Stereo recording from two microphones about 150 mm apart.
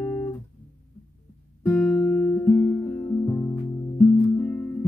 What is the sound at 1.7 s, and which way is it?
Guitar, 20° left (ahead or behind).